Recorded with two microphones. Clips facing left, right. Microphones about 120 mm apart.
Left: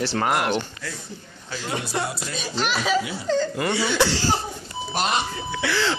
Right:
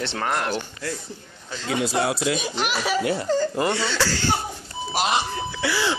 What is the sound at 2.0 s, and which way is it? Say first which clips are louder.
Speech: right 7 dB; 90° right.